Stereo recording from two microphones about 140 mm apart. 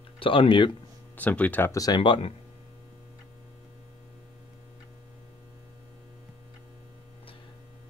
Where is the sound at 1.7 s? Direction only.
25° left (ahead or behind).